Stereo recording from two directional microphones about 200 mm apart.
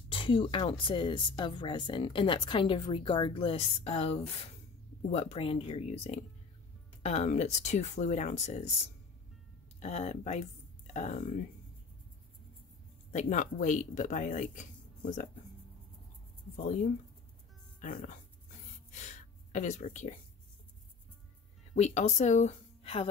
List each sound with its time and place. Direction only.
0.1 s a woman's voice: 25° left (ahead or behind)
9.8 s speech: 35° left (ahead or behind)
13.1 s speech: 40° left (ahead or behind)
16.5 s speech: 40° left (ahead or behind)
18.9 s gasp: 35° left (ahead or behind)
21.7 s speech: 35° left (ahead or behind)